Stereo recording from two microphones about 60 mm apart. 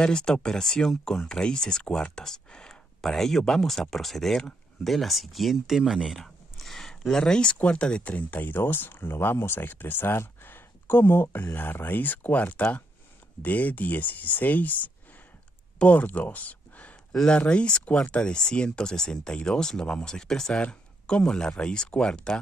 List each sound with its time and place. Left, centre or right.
0.0 s speech: centre
5.8 s speech: centre
6.0 s a sound: centre
7.5 s speech: centre